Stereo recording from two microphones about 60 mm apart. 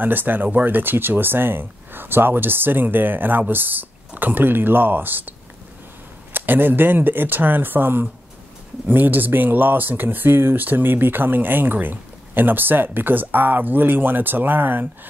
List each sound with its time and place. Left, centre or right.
0.0 s speech: right
6.3 s speech: right